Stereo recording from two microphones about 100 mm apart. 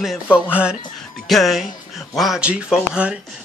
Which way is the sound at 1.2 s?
Centre (ahead or behind).